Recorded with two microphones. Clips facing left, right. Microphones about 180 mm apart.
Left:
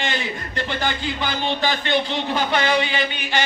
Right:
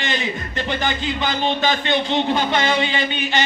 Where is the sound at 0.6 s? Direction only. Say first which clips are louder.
Right 2 dB; 20° right (ahead or behind).